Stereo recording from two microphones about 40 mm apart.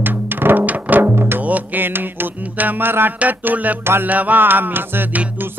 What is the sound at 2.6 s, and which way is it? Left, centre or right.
Music, right.